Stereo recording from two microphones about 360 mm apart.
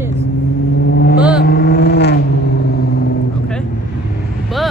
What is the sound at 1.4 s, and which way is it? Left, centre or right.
Vehicle, left.